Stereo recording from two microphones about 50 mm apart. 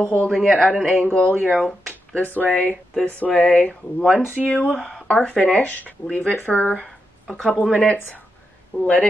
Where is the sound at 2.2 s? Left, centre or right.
Left.